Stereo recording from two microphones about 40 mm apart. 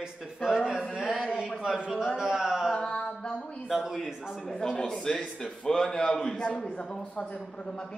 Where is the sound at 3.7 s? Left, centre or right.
Centre.